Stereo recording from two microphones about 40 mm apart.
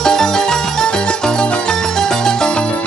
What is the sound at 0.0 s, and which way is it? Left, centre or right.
Music, centre.